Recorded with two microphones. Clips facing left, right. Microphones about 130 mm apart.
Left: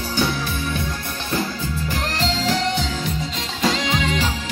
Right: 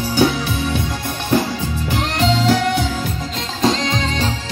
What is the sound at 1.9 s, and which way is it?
Music, 65° right (ahead or behind).